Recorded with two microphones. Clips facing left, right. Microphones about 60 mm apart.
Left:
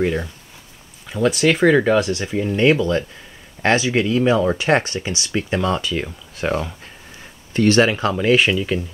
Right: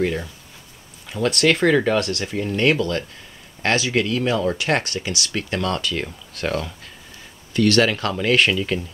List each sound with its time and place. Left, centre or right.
0.0 s speech: centre